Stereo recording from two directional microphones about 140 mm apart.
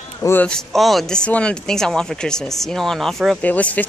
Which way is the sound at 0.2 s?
15° left (ahead or behind).